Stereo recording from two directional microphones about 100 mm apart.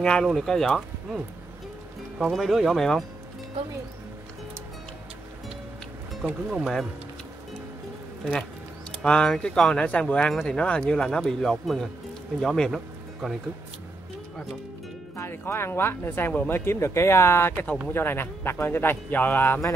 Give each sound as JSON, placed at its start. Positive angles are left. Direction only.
{"t": 0.0, "sound": "speech", "side_deg": 5}
{"t": 2.1, "sound": "speech", "side_deg": 0}
{"t": 6.6, "sound": "speech", "side_deg": 0}
{"t": 9.0, "sound": "speech", "side_deg": 10}
{"t": 15.1, "sound": "speech", "side_deg": 25}